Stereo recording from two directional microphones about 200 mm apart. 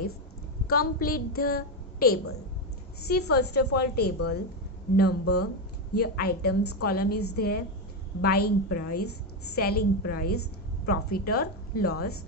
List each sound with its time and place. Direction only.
0.7 s a woman's voice: 45° left (ahead or behind)